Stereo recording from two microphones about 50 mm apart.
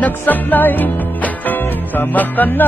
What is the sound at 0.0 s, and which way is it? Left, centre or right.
Music, left.